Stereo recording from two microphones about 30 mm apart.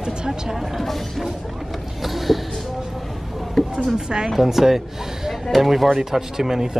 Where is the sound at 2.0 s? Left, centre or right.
Centre.